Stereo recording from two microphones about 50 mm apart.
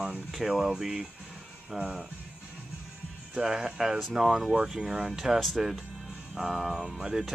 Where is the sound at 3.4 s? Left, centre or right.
Centre.